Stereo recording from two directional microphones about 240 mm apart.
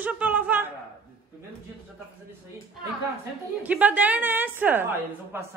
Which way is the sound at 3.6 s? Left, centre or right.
Centre.